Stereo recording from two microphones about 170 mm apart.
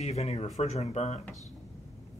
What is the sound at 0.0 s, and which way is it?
Speech, 40° left (ahead or behind).